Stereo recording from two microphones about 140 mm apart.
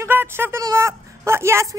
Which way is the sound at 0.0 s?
15° right (ahead or behind).